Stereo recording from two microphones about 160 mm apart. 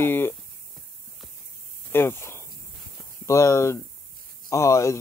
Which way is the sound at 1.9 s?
15° left (ahead or behind).